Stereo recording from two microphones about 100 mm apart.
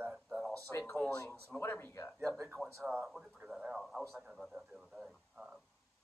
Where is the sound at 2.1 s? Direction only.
25° right (ahead or behind).